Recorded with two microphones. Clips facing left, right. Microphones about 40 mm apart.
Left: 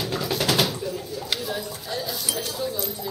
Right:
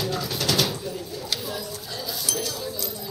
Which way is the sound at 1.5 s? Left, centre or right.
Left.